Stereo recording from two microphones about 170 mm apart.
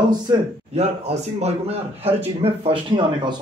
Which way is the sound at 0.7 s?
40° right (ahead or behind).